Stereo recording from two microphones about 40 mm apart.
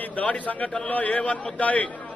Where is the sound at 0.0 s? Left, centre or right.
Left.